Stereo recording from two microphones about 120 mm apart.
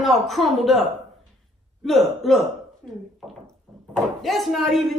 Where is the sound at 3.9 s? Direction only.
Centre (ahead or behind).